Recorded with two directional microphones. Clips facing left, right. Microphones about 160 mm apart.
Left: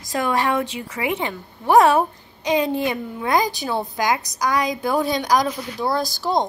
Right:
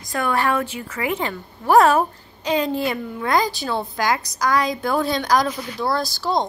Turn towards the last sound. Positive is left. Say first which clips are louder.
# left 1 dB
turn(degrees=15)  # may be behind; listen again after turning